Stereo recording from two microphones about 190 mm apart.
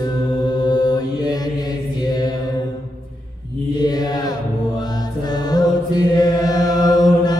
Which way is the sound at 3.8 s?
20° left (ahead or behind).